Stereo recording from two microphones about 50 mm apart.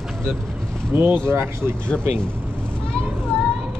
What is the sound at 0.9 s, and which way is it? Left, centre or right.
Speech, right.